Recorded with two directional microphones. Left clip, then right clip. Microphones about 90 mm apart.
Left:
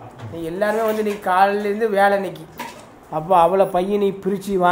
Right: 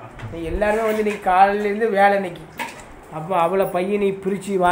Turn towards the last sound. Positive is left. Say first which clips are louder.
# left 1 dB
turn(degrees=15)  # may be behind; listen again after turning